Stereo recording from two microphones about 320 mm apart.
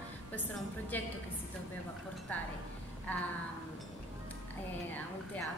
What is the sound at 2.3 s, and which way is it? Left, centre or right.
Speech, centre.